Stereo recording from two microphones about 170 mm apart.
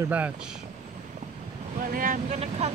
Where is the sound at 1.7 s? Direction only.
55° right (ahead or behind).